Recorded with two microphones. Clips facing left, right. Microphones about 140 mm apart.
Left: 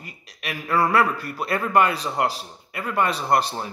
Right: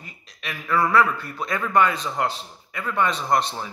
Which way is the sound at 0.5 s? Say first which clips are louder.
Left 1 dB; 40° left (ahead or behind).